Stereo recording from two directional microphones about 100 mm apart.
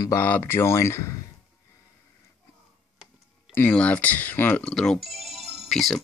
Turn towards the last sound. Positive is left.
turn(degrees=5)  # may be behind; listen again after turning